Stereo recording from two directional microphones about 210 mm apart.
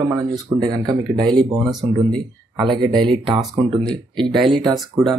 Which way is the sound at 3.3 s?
20° right (ahead or behind).